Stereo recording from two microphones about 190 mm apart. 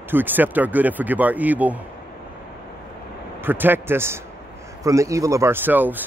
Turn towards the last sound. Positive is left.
turn(degrees=-10)  # may be behind; listen again after turning